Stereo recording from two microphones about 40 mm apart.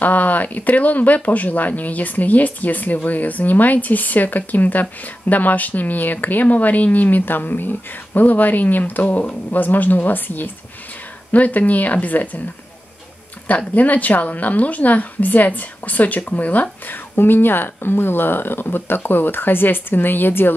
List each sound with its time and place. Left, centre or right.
0.0 s speech: left
11.3 s a woman's voice: left
13.5 s a woman's voice: left
16.8 s speech: left